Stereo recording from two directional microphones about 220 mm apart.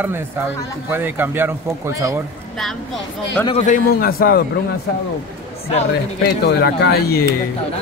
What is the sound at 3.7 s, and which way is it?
Speech, 40° left (ahead or behind).